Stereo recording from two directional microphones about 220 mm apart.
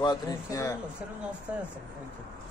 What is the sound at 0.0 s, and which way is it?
Speech, 15° left (ahead or behind).